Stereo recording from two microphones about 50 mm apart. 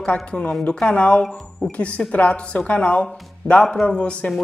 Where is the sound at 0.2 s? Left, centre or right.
Centre.